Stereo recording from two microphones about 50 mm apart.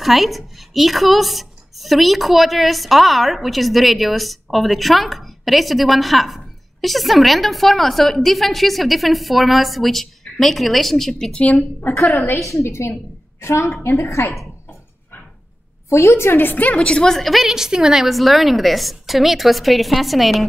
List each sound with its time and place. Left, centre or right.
0.0 s a woman's voice: centre
11.3 s a woman's voice: left
12.4 s a woman's voice: left
15.9 s a woman's voice: left
16.5 s a woman's voice: left
16.8 s a woman's voice: centre
17.1 s a woman's voice: centre